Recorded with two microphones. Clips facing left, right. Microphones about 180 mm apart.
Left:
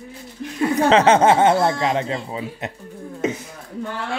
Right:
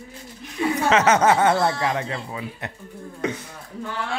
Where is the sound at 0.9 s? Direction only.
30° left (ahead or behind).